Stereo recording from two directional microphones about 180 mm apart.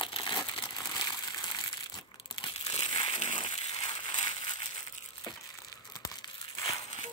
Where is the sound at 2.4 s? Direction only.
30° left (ahead or behind).